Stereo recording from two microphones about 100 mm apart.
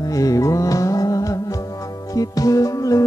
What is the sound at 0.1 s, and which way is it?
Music, 35° left (ahead or behind).